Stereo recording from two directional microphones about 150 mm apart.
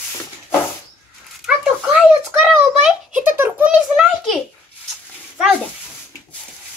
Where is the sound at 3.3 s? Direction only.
15° right (ahead or behind).